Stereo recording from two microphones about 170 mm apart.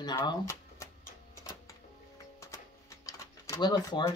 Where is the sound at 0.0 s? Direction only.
25° left (ahead or behind).